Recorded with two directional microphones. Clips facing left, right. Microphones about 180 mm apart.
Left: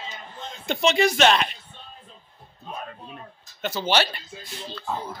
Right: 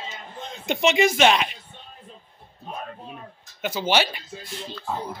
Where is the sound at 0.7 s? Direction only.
20° right (ahead or behind).